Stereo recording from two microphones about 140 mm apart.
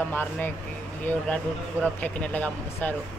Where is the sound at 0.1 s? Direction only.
15° left (ahead or behind).